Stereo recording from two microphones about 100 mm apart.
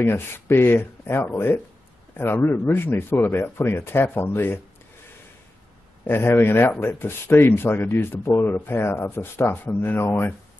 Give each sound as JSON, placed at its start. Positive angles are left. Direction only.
{"t": 0.0, "sound": "speech", "side_deg": 25}
{"t": 6.0, "sound": "speech", "side_deg": 25}